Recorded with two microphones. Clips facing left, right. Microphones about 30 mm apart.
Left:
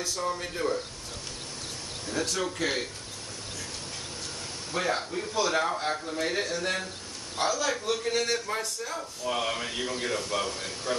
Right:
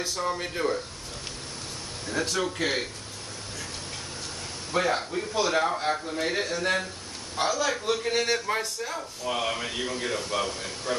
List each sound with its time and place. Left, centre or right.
0.0 s speech: right
2.0 s a man's voice: centre
4.7 s a man's voice: centre
8.9 s a man's voice: centre